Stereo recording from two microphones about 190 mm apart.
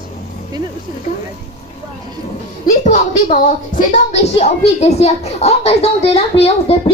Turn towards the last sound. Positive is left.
turn(degrees=30)  # may be behind; listen again after turning